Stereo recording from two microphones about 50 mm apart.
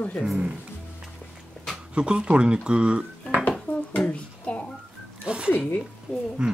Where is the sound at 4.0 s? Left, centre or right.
Left.